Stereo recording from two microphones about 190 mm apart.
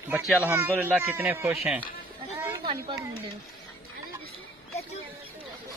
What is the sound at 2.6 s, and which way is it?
Speech, 30° right (ahead or behind).